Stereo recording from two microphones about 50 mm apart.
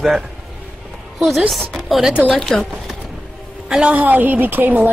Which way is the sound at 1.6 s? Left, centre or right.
Centre.